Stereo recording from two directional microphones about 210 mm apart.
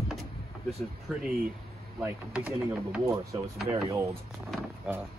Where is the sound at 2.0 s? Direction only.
5° right (ahead or behind).